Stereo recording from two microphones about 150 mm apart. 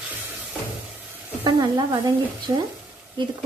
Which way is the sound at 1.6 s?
25° right (ahead or behind).